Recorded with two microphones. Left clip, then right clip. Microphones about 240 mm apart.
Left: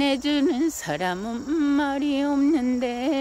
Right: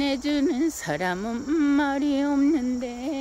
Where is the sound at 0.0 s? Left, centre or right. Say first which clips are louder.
Left 2 dB; centre.